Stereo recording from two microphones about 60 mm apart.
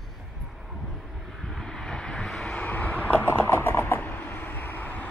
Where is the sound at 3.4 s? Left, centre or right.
Left.